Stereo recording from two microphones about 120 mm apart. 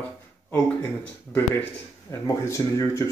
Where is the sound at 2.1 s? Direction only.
25° left (ahead or behind).